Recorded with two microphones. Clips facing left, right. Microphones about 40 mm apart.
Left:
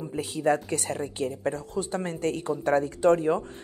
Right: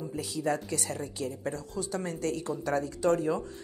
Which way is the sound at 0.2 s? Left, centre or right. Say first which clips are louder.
Left 6 dB; left.